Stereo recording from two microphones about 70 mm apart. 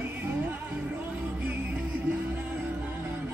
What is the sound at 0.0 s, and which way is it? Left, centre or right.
Music, right.